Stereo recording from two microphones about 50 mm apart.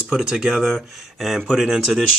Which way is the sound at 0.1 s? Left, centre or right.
Centre.